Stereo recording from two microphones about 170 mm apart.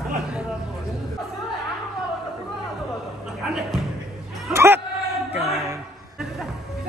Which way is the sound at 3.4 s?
5° right (ahead or behind).